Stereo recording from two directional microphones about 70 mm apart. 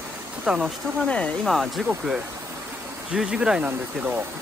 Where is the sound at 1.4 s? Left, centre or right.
Centre.